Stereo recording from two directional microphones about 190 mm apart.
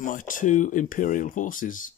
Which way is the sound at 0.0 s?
45° left (ahead or behind).